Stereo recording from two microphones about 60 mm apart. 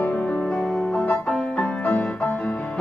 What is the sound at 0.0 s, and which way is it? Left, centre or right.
Music, left.